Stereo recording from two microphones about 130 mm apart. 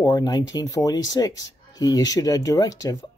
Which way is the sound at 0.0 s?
30° left (ahead or behind).